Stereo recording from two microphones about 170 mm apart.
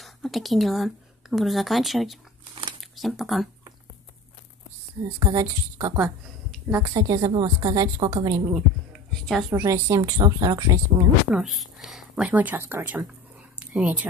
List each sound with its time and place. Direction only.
0.0 s a woman's voice: centre (ahead or behind)
5.2 s a woman's voice: 20° right (ahead or behind)
9.2 s a woman's voice: centre (ahead or behind)
9.5 s a woman's voice: 15° right (ahead or behind)
11.2 s speech: centre (ahead or behind)
13.6 s a sound: 10° right (ahead or behind)